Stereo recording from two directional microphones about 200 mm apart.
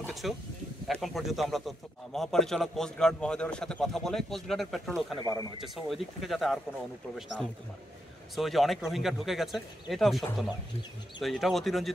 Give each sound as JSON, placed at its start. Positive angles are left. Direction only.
{"t": 0.0, "sound": "a sound", "side_deg": 0}
{"t": 0.8, "sound": "a man's voice", "side_deg": 0}
{"t": 8.4, "sound": "a man's voice", "side_deg": 0}